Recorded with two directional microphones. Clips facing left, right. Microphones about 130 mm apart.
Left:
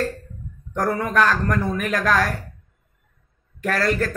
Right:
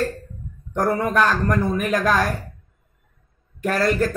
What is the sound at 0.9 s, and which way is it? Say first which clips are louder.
Speech: even; 10° right (ahead or behind).